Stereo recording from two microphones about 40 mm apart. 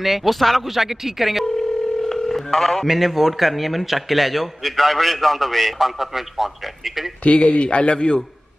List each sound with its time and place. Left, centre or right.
0.0 s a man's voice: centre
2.0 s telephone: centre
2.9 s a man's voice: centre
7.2 s a man's voice: left